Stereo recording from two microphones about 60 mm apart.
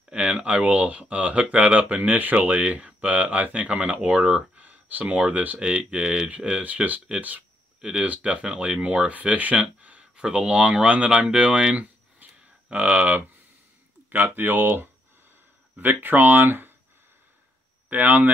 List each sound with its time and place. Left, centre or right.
0.1 s speech: centre; by 16.7 s right
17.8 s speech: right